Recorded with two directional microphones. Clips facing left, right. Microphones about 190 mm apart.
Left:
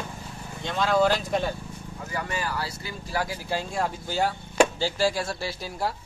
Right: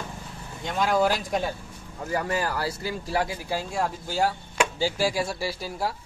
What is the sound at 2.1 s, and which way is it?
Speech, 50° right (ahead or behind).